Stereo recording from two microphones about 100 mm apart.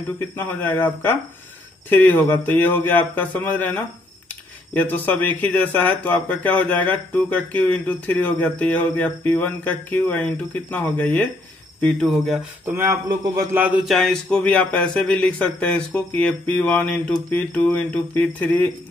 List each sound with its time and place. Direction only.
0.2 s speech: 20° left (ahead or behind)
11.8 s speech: centre (ahead or behind)
12.6 s speech: 20° right (ahead or behind)
13.1 s a man's voice: 40° right (ahead or behind)
13.5 s a man's voice: 15° right (ahead or behind)
13.8 s speech: 5° left (ahead or behind)